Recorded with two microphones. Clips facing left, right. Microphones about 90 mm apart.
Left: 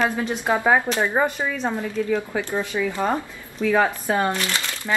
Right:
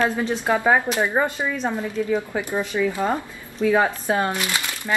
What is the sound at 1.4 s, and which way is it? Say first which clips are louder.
Speech: even; 15° right (ahead or behind).